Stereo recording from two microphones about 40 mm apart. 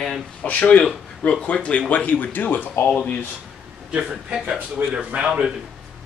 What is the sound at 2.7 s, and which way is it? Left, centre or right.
Speech, left.